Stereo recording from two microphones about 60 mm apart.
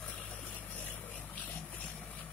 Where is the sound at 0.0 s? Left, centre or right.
Left.